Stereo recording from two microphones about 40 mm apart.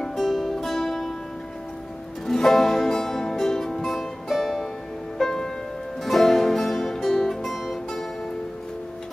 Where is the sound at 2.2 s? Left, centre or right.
Centre.